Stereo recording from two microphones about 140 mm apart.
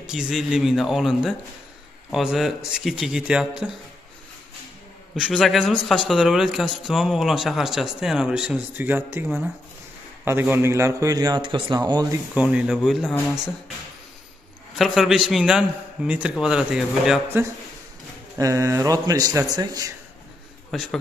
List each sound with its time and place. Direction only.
0.0 s a man's voice: 5° right (ahead or behind)
5.1 s a man's voice: centre (ahead or behind); by 12.1 s 30° right (ahead or behind)
12.4 s a man's voice: 10° right (ahead or behind)
14.8 s a man's voice: centre (ahead or behind)
18.4 s a man's voice: 25° right (ahead or behind)
20.7 s a man's voice: centre (ahead or behind)